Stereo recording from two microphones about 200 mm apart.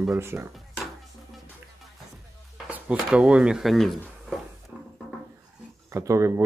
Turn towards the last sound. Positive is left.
turn(degrees=-15)  # may be behind; listen again after turning